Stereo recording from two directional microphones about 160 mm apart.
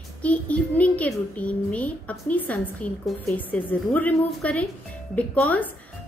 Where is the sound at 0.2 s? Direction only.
10° left (ahead or behind).